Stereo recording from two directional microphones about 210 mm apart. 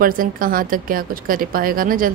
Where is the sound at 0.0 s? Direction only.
45° right (ahead or behind).